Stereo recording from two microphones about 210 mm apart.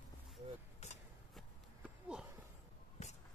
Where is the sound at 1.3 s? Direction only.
5° right (ahead or behind).